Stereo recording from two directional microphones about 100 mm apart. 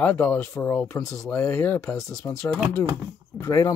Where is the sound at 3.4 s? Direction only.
30° left (ahead or behind).